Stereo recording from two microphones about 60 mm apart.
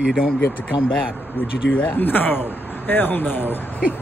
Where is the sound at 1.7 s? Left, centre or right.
Left.